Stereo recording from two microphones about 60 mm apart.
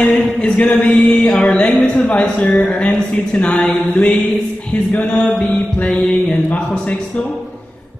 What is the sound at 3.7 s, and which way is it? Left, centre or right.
Mantra, left.